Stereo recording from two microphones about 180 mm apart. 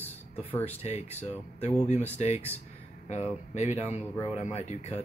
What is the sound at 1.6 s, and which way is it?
Speech, 40° left (ahead or behind).